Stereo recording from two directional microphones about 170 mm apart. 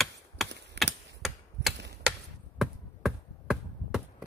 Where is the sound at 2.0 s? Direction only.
Centre (ahead or behind).